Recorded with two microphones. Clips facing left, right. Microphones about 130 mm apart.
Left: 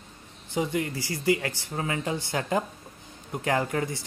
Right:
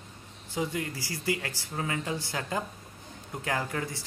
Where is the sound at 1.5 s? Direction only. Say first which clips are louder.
Left 2 dB; 20° left (ahead or behind).